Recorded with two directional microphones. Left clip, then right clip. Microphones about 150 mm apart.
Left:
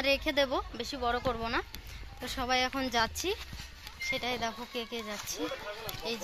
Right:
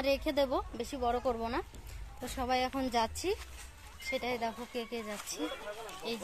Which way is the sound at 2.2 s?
15° right (ahead or behind).